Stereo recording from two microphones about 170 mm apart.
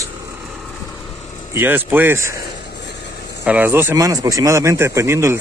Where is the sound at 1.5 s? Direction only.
10° right (ahead or behind).